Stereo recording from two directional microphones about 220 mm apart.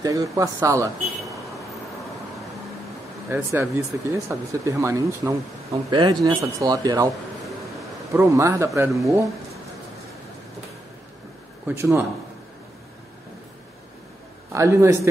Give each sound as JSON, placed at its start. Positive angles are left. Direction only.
{"t": 0.0, "sound": "speech", "side_deg": -15}
{"t": 3.3, "sound": "speech", "side_deg": -10}
{"t": 8.1, "sound": "speech", "side_deg": -15}
{"t": 11.6, "sound": "speech", "side_deg": -10}
{"t": 14.5, "sound": "speech", "side_deg": -15}